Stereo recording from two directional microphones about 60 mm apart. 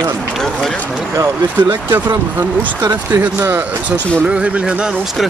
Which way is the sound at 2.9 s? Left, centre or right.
Right.